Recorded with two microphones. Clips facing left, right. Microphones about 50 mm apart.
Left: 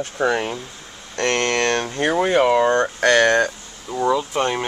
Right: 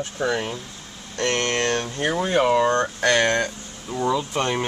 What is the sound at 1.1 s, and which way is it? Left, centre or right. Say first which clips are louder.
Speech: left 3 dB; left.